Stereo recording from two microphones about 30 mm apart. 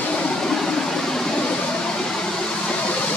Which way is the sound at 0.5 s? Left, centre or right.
Centre.